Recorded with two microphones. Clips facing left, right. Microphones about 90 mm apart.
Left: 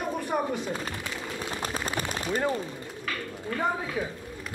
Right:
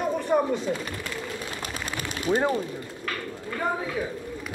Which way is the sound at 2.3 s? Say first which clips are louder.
Right 5 dB; 35° right (ahead or behind).